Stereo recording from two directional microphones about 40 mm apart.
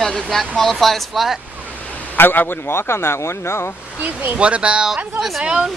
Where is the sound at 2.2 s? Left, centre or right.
Left.